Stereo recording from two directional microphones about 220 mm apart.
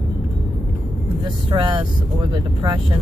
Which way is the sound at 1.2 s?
20° right (ahead or behind).